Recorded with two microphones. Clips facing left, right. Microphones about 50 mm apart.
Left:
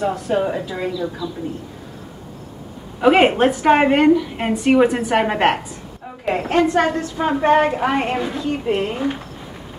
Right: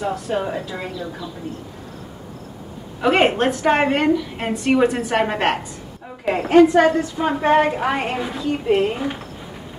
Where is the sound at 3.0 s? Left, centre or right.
Centre.